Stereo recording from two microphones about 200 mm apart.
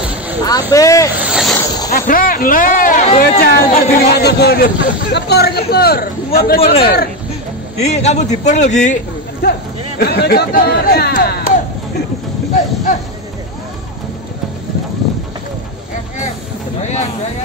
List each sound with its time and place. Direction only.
0.4 s speech: 20° left (ahead or behind)
1.2 s boat: centre (ahead or behind)
1.9 s speech: 45° left (ahead or behind)
7.9 s a man's voice: 35° left (ahead or behind)
9.4 s speech: 55° left (ahead or behind)